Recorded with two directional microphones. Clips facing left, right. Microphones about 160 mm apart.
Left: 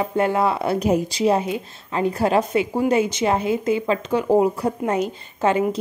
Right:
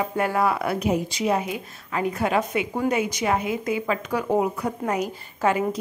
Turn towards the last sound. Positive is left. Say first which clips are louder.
# left 3 dB
turn(degrees=25)  # may be behind; listen again after turning